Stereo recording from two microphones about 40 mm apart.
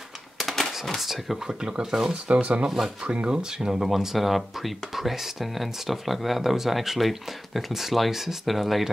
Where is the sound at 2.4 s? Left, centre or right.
Right.